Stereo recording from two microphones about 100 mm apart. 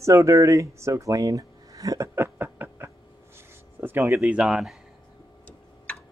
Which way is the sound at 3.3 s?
20° right (ahead or behind).